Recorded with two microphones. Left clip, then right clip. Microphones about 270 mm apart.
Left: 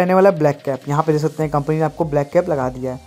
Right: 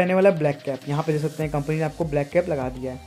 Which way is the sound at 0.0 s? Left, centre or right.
Centre.